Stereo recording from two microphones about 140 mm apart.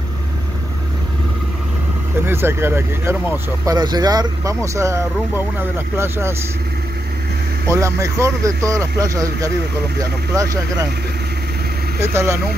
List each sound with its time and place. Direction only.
2.2 s speech: 15° right (ahead or behind)
3.7 s speech: 30° right (ahead or behind)
7.7 s speech: 20° right (ahead or behind)
12.0 s speech: 20° right (ahead or behind)